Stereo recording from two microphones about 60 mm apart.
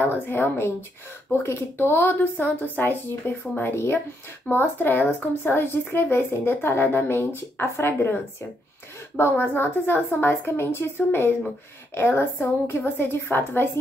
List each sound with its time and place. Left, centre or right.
0.0 s speech: left